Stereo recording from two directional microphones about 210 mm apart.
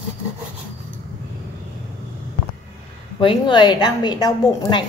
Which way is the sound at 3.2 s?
25° left (ahead or behind).